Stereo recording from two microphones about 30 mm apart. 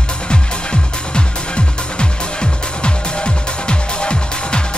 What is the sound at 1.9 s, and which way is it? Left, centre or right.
Music, left.